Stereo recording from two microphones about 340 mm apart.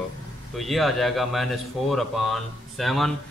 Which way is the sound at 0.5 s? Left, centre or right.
Centre.